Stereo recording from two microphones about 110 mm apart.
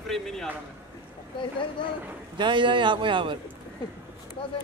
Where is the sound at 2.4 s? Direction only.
45° right (ahead or behind).